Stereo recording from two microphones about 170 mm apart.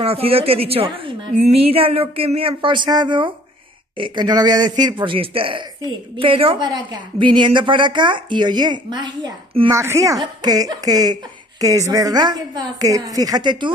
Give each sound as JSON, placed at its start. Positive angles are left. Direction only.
{"t": 0.0, "sound": "a woman's voice", "side_deg": -35}
{"t": 9.7, "sound": "a woman's voice", "side_deg": -15}